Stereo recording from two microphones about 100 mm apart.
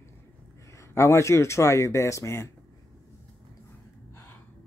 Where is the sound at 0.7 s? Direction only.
30° left (ahead or behind).